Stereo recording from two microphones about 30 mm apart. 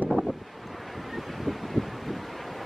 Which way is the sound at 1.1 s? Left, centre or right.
Centre.